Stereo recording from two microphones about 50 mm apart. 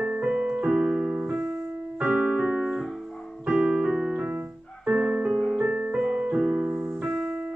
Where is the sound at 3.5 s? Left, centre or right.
Right.